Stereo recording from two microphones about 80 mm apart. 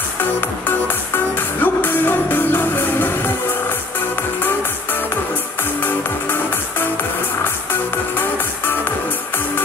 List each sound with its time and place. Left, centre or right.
0.2 s music: left